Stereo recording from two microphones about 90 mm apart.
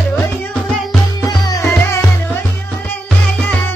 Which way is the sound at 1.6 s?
25° left (ahead or behind).